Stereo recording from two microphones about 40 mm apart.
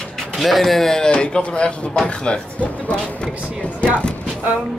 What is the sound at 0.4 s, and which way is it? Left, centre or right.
Speech, centre.